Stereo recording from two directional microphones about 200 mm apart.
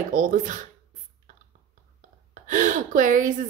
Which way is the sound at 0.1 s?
40° right (ahead or behind).